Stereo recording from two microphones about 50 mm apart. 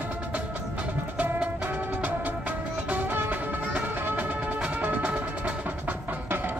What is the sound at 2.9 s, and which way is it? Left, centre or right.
Music, right.